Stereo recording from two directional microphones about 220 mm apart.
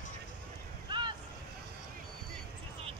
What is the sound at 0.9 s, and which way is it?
Vehicle, 20° right (ahead or behind).